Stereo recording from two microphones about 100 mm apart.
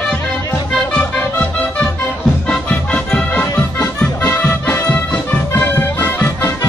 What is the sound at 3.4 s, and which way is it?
Music, 25° left (ahead or behind).